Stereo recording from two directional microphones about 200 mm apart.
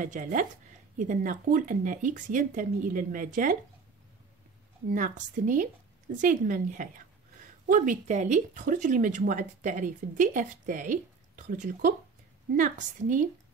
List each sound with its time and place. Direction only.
0.0 s speech: 40° right (ahead or behind)
4.9 s speech: 40° right (ahead or behind)